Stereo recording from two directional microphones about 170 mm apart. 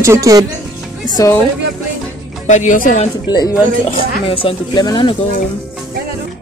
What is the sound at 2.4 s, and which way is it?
Speech, 45° left (ahead or behind).